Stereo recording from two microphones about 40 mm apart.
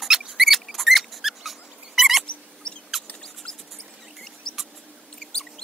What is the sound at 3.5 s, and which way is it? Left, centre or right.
Mouse, centre.